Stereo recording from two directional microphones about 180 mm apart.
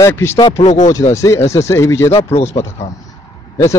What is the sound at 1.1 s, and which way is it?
Speech, 15° left (ahead or behind).